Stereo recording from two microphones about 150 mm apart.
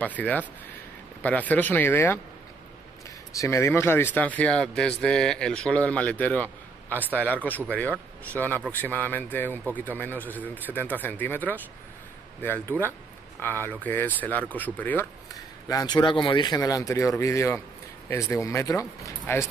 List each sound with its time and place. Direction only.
0.0 s speech: 10° left (ahead or behind)
3.3 s speech: 15° left (ahead or behind)
15.3 s speech: 25° left (ahead or behind)